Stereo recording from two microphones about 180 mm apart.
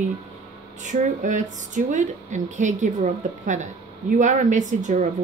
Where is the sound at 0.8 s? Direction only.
45° right (ahead or behind).